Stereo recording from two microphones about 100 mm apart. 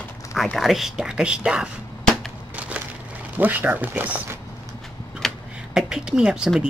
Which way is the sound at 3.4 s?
15° right (ahead or behind).